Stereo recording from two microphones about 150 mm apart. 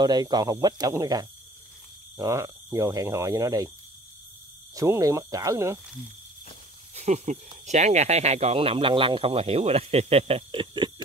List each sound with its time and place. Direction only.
0.0 s speech: 25° right (ahead or behind)
4.7 s speech: 20° right (ahead or behind)
7.0 s speech: 50° right (ahead or behind); by 10.9 s 35° right (ahead or behind)